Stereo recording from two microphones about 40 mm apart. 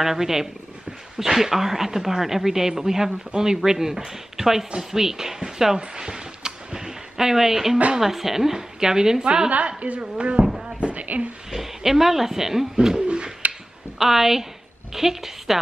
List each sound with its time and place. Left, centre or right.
0.0 s a woman's voice: centre
5.8 s a sound: centre
8.0 s a woman's voice: centre
9.2 s a woman's voice: right
11.5 s a woman's voice: centre
13.0 s bird: right
13.9 s a woman's voice: centre